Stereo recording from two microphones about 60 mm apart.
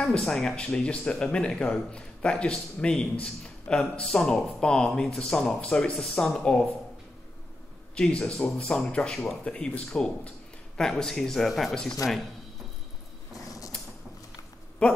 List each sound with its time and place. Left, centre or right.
0.2 s speech: centre
7.9 s speech: centre
13.4 s creak: left